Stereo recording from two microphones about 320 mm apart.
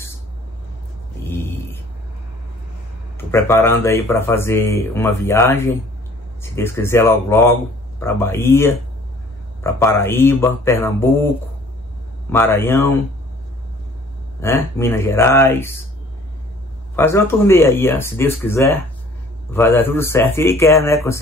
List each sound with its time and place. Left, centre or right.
1.3 s a sound: centre
3.3 s speech: centre
12.3 s speech: centre
14.4 s speech: centre
16.9 s speech: centre